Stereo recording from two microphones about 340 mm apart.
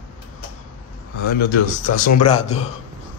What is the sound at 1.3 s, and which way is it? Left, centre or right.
Speech, left.